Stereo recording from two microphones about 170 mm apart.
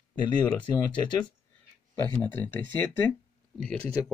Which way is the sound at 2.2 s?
10° left (ahead or behind).